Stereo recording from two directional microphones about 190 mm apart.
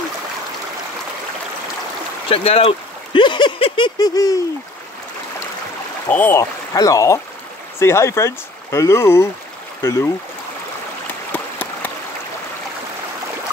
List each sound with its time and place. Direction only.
2.2 s speech: 30° left (ahead or behind)
6.0 s speech: 10° left (ahead or behind)
11.3 s a sound: 10° left (ahead or behind)